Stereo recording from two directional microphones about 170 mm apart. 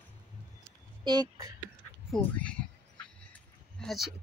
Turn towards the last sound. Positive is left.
turn(degrees=0)  # may be behind; listen again after turning